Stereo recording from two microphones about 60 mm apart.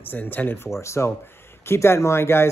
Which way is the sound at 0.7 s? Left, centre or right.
Left.